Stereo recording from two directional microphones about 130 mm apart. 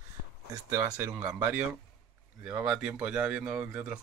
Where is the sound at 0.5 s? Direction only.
25° right (ahead or behind).